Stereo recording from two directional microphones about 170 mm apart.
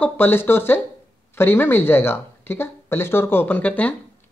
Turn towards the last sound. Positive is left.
turn(degrees=10)  # may be behind; listen again after turning